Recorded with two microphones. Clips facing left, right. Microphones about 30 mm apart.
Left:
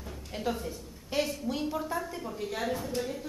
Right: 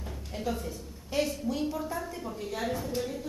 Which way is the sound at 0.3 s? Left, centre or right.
Centre.